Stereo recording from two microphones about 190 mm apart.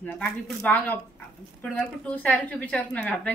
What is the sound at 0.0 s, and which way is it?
A woman's voice, 5° left (ahead or behind).